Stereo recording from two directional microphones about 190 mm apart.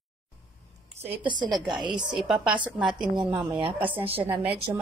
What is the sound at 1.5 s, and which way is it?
A woman's voice, 5° right (ahead or behind).